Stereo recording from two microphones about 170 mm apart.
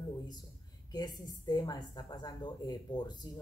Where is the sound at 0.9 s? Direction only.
25° left (ahead or behind).